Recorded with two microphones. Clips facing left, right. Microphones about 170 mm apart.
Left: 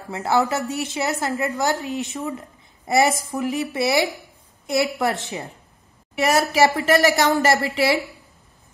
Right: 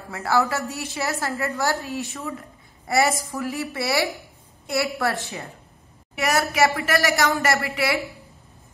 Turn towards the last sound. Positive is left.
turn(degrees=25)  # may be behind; listen again after turning